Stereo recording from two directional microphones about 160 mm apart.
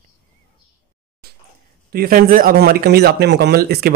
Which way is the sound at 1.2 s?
70° right (ahead or behind).